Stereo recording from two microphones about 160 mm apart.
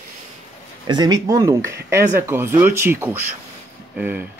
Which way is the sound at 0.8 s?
25° right (ahead or behind).